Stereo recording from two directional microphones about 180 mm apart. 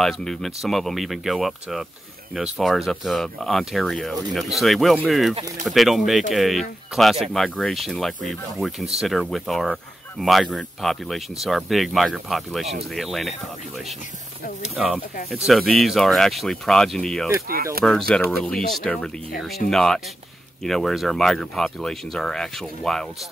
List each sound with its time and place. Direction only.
0.0 s speech: centre (ahead or behind)
14.8 s speech: centre (ahead or behind)
17.5 s speech: 55° right (ahead or behind)
17.8 s speech: centre (ahead or behind)